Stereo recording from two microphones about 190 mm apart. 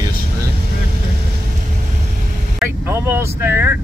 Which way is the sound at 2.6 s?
15° right (ahead or behind).